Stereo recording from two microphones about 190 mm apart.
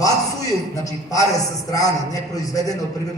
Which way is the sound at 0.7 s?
20° left (ahead or behind).